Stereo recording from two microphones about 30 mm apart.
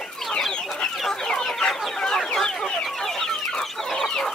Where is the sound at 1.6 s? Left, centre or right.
Left.